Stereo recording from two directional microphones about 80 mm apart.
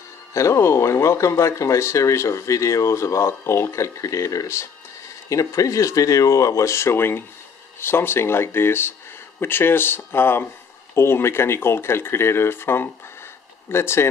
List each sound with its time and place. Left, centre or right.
0.3 s speech: left